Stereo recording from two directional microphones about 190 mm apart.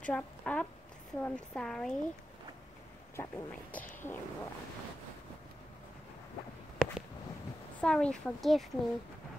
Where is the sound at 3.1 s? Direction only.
10° left (ahead or behind).